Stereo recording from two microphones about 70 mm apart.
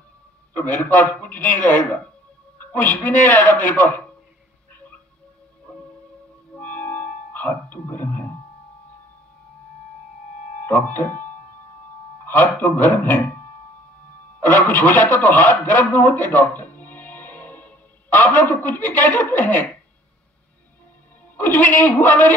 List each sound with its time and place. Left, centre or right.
0.6 s speech: left
6.5 s music: left
10.6 s speech: left
12.3 s speech: left
14.4 s a man's voice: left
21.4 s speech: left